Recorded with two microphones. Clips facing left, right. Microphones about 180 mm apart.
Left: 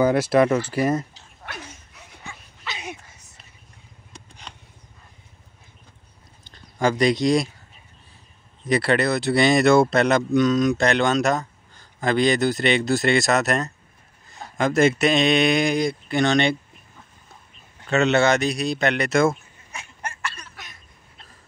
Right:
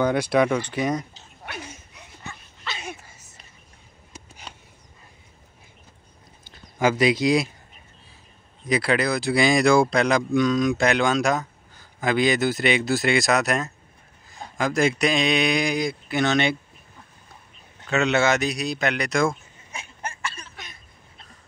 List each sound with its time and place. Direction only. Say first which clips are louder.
0.0 s a man's voice: left 3 dB; 5° left (ahead or behind)
2.0 s dog: left 1 dB; 10° left (ahead or behind)
3.0 s a sound: right 1 dB; 5° right (ahead or behind)
6.5 s speech: even; 5° right (ahead or behind)
8.6 s a man's voice: left 2 dB; centre (ahead or behind)
17.8 s a man's voice: left 2 dB; centre (ahead or behind)